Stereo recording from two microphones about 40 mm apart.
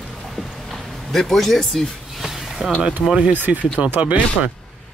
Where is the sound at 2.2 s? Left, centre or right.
Centre.